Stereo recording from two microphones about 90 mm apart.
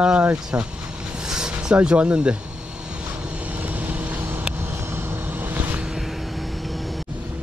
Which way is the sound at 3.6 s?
15° right (ahead or behind).